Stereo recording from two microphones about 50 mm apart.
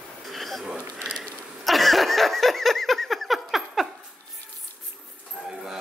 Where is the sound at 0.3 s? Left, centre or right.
Centre.